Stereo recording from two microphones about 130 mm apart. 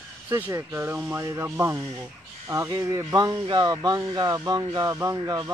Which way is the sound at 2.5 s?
25° right (ahead or behind).